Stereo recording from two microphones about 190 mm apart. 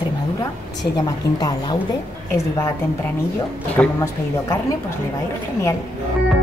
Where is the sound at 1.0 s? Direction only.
20° left (ahead or behind).